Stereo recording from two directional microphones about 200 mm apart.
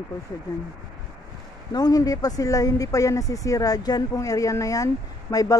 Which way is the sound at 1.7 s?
20° left (ahead or behind).